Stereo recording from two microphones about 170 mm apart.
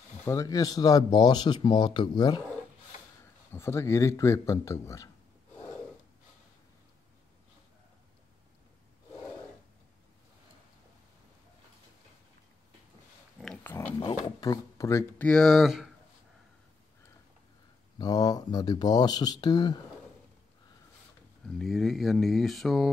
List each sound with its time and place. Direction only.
0.2 s speech: 15° left (ahead or behind)
3.5 s speech: 15° left (ahead or behind)
13.4 s pig: 5° left (ahead or behind)
13.7 s pig: 15° left (ahead or behind)
14.2 s speech: 20° left (ahead or behind); by 15.9 s centre (ahead or behind)
17.9 s speech: 20° left (ahead or behind)
21.5 s speech: centre (ahead or behind)